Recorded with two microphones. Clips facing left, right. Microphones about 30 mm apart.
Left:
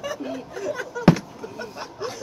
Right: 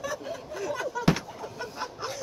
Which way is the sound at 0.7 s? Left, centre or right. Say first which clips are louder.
Left 7 dB; centre.